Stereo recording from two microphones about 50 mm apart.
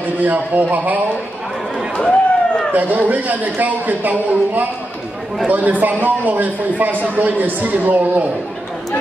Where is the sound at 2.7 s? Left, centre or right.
Right.